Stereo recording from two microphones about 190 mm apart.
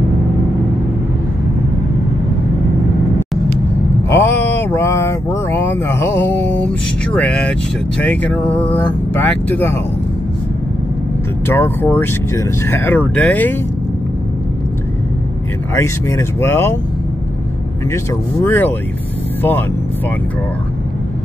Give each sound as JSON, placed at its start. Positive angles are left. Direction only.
{"t": 4.1, "sound": "a sound", "side_deg": 10}
{"t": 8.0, "sound": "speech", "side_deg": 10}
{"t": 11.4, "sound": "speech", "side_deg": 10}
{"t": 15.7, "sound": "speech", "side_deg": 15}
{"t": 18.4, "sound": "speech", "side_deg": 10}